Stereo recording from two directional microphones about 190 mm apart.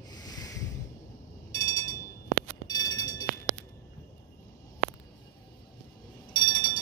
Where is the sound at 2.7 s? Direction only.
20° left (ahead or behind).